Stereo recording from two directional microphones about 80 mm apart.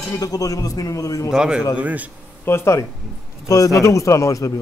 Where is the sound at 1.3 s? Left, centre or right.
Centre.